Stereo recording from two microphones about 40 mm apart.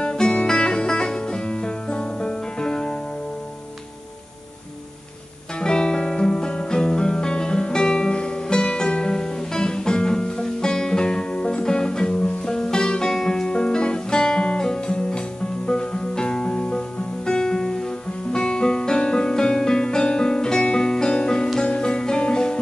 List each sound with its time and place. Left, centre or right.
0.0 s music: left
5.6 s music: left
17.3 s guitar: centre
18.3 s music: left